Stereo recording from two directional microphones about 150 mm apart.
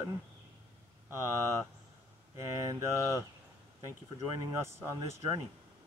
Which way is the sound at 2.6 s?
20° right (ahead or behind).